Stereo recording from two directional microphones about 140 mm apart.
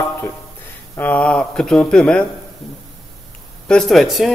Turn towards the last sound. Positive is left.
turn(degrees=0)  # may be behind; listen again after turning